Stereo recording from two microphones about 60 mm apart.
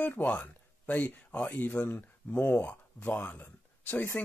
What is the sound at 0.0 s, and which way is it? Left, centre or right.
Speech, left.